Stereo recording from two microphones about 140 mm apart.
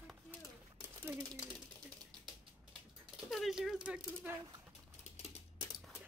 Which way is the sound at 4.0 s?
20° right (ahead or behind).